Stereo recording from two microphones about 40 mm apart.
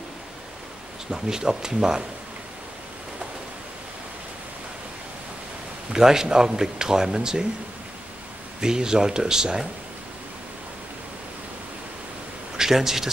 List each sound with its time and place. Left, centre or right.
1.1 s speech: centre
5.9 s speech: centre
8.5 s speech: centre
12.5 s speech: centre